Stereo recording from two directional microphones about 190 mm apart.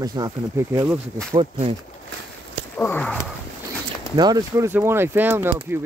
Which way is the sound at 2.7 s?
10° left (ahead or behind).